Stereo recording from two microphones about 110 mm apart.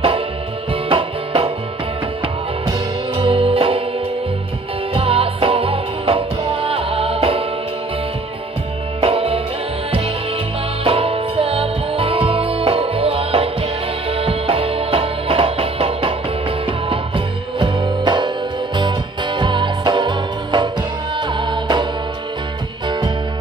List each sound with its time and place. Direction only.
0.8 s music: 55° right (ahead or behind)
3.2 s music: 55° right (ahead or behind)
4.9 s music: 60° right (ahead or behind)
9.0 s music: 60° right (ahead or behind)
10.8 s music: 60° right (ahead or behind)
22.8 s music: 45° right (ahead or behind)